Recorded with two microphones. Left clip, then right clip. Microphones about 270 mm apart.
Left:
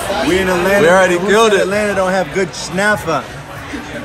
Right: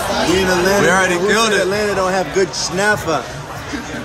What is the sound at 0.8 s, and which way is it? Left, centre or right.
Speech, centre.